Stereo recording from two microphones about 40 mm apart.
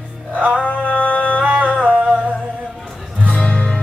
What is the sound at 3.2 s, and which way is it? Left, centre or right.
Music, left.